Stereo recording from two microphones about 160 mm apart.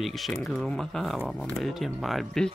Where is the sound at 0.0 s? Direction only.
Centre (ahead or behind).